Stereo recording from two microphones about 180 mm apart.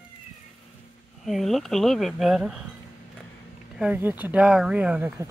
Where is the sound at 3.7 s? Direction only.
10° right (ahead or behind).